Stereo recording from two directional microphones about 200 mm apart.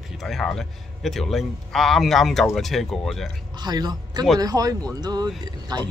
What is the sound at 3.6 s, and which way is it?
Speech, 20° right (ahead or behind).